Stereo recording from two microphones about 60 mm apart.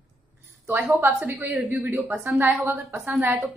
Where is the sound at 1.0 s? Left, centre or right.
Right.